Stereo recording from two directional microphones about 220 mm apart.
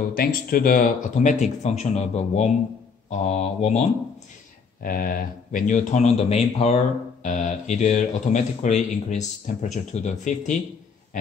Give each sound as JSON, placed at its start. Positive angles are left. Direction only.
{"t": 0.1, "sound": "speech", "side_deg": 40}
{"t": 3.1, "sound": "mantra", "side_deg": 30}
{"t": 4.8, "sound": "speech", "side_deg": 40}